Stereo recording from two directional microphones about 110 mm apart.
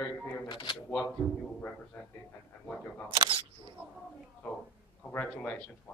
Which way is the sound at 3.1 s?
50° right (ahead or behind).